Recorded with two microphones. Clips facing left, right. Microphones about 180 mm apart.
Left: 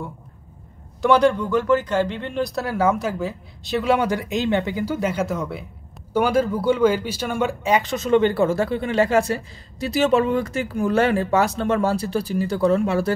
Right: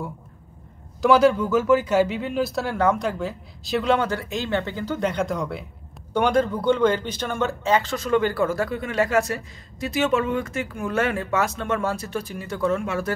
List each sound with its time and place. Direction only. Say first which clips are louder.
1.0 s speech: even; centre (ahead or behind); by 13.1 s 30° left (ahead or behind)